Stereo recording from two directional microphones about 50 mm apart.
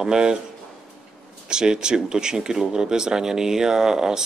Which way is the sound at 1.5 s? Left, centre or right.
Centre.